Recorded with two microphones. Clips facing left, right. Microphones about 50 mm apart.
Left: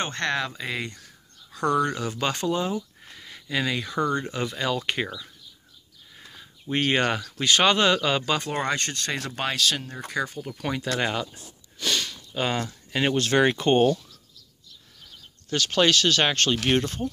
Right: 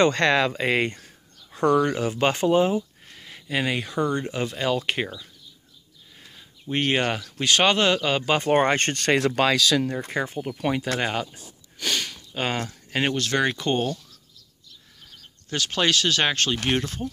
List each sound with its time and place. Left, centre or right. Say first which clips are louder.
0.0 s speech: right 8 dB; right
0.9 s speech: right 2 dB; right
3.2 s a sound: right 1 dB; centre
3.9 s speech: right 1 dB; centre
6.6 s speech: even; centre
8.5 s speech: right 7 dB; right
9.0 s speech: right 8 dB; right
10.2 s speech: right 3 dB; right
10.5 s speech: right 4 dB; centre
11.8 s sniff: even; centre
13.1 s speech: left 6 dB; centre
15.5 s speech: left 2 dB; centre